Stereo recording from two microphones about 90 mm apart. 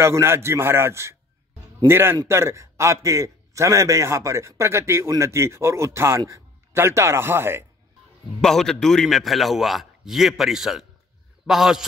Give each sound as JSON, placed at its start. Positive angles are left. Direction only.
{"t": 0.0, "sound": "a man's voice", "side_deg": -30}
{"t": 8.4, "sound": "a man's voice", "side_deg": 5}